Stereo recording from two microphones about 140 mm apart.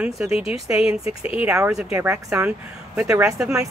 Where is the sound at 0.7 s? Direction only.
5° right (ahead or behind).